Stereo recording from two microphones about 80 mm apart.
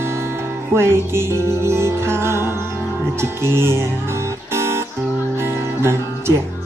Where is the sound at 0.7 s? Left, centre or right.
Right.